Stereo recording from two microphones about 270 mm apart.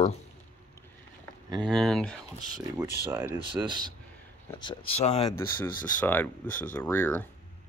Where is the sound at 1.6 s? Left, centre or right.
Centre.